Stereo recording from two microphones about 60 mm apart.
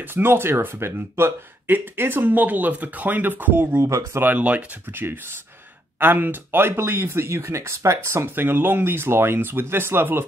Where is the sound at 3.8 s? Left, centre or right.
Right.